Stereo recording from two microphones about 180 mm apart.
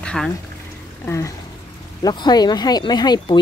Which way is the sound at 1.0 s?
15° left (ahead or behind).